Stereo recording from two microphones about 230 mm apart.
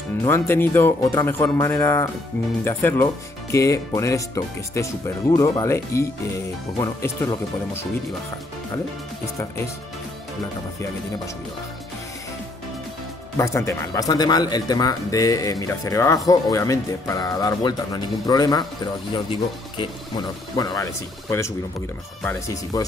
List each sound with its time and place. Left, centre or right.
0.2 s speech: centre
13.4 s speech: centre